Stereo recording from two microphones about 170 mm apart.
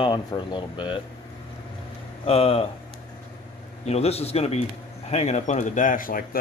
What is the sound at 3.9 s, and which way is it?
A man's voice, 40° left (ahead or behind).